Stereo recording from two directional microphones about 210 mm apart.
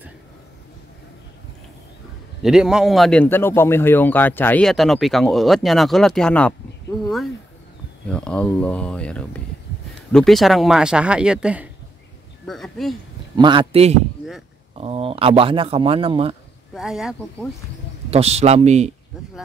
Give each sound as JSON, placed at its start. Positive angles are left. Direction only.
{"t": 2.4, "sound": "a man's voice", "side_deg": -5}
{"t": 8.1, "sound": "a man's voice", "side_deg": 5}
{"t": 13.4, "sound": "speech", "side_deg": -25}
{"t": 16.7, "sound": "a man's voice", "side_deg": 0}
{"t": 18.1, "sound": "speech", "side_deg": -30}